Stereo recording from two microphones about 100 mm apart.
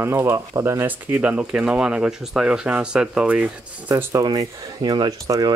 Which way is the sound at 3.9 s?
35° right (ahead or behind).